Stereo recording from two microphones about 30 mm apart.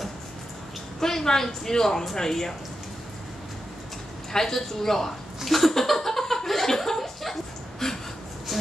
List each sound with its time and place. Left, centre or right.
1.0 s speech: centre
4.3 s speech: centre
5.4 s a sound: centre